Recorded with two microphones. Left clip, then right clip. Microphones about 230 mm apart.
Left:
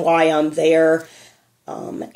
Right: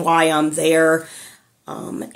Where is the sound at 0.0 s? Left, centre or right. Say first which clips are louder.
Even; centre.